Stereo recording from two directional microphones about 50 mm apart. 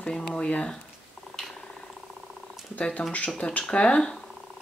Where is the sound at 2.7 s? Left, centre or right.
Left.